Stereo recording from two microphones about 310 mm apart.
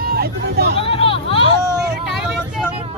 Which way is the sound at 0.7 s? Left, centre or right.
Centre.